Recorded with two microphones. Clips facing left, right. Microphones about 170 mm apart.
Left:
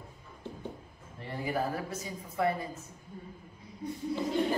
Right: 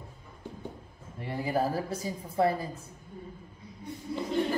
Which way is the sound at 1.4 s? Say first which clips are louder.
Right 3 dB; 30° right (ahead or behind).